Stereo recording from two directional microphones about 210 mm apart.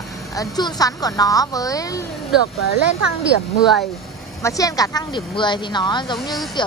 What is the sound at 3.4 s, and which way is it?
Speech, centre (ahead or behind).